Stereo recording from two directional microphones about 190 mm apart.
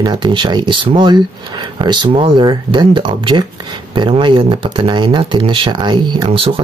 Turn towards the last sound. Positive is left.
turn(degrees=-30)  # may be behind; listen again after turning